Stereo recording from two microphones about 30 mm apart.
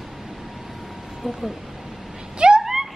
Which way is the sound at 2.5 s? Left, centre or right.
Centre.